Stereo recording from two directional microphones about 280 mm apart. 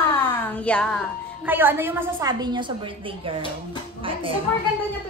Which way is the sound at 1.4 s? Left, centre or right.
Centre.